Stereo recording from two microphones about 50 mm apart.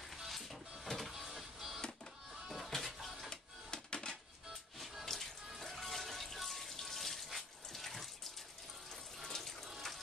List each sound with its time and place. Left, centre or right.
0.1 s music: centre
3.3 s music: centre
5.0 s music: centre
9.2 s water: centre
9.7 s water tap: centre